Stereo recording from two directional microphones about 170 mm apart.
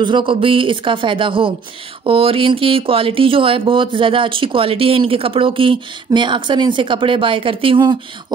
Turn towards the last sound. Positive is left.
turn(degrees=-30)  # may be behind; listen again after turning